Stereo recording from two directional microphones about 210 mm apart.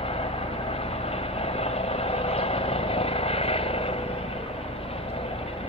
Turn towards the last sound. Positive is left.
turn(degrees=25)  # may be behind; listen again after turning